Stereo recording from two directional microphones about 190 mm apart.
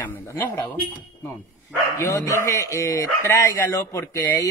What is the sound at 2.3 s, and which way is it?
Speech, 15° left (ahead or behind).